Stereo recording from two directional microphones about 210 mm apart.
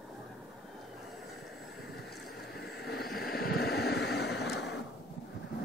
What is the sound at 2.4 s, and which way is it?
Vehicle, 50° left (ahead or behind).